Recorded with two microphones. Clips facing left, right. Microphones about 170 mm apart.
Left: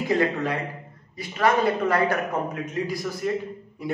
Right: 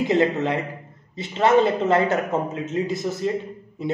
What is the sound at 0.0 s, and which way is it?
A man's voice, 20° right (ahead or behind).